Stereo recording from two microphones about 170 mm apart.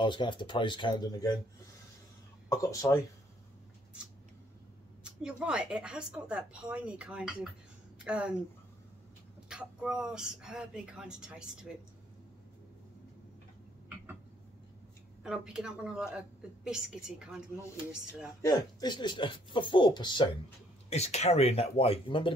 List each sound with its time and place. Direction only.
0.0 s speech: 30° left (ahead or behind)
2.5 s speech: 20° left (ahead or behind)
5.0 s a woman's voice: 5° right (ahead or behind)
9.5 s speech: 5° right (ahead or behind)
15.2 s speech: 5° right (ahead or behind)
18.4 s speech: 20° left (ahead or behind)
20.9 s speech: 40° left (ahead or behind)